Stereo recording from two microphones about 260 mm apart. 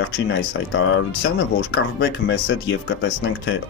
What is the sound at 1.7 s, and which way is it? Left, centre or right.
Speech, left.